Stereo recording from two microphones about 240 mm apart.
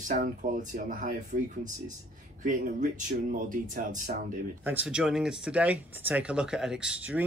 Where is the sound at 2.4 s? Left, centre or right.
Right.